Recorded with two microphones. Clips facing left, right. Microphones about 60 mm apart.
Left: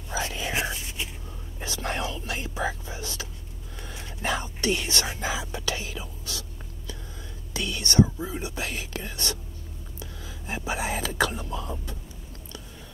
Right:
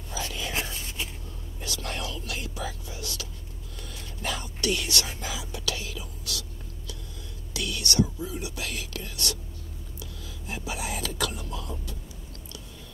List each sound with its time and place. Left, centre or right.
0.1 s whispering: left
7.5 s speech: left